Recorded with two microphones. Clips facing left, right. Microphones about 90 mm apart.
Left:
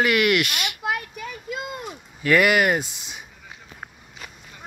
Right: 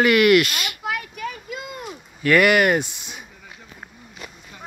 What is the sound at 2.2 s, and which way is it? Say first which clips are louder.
Speech: right 2 dB; 15° left (ahead or behind).